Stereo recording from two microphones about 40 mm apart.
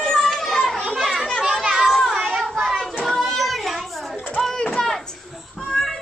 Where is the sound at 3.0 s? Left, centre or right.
Centre.